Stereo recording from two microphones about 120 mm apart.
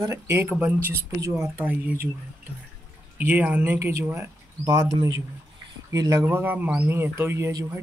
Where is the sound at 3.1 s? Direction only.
15° right (ahead or behind); by 6.2 s 30° right (ahead or behind).